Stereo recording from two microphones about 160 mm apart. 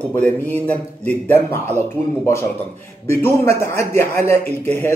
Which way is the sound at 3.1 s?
15° left (ahead or behind).